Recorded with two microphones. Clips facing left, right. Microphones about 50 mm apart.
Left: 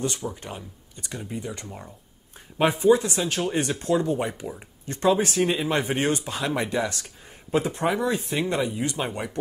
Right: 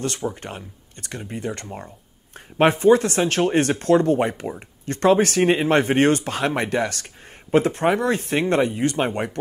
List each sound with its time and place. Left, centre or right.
0.4 s speech: right
2.3 s speech: right
5.4 s speech: right